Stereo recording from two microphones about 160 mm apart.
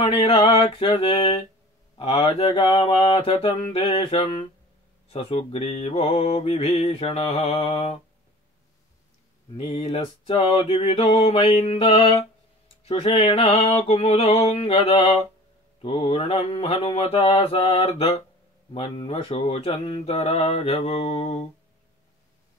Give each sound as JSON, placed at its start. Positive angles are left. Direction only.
{"t": 0.0, "sound": "mantra", "side_deg": 40}
{"t": 2.0, "sound": "speech", "side_deg": 30}
{"t": 2.3, "sound": "mantra", "side_deg": 35}
{"t": 9.6, "sound": "mantra", "side_deg": 40}